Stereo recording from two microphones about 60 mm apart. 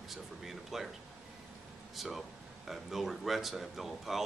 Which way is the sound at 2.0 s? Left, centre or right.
Centre.